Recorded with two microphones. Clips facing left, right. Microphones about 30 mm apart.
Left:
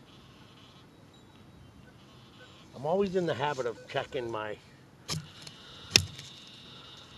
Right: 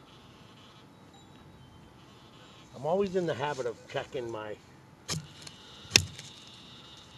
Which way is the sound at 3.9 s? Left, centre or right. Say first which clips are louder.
Left 4 dB; left.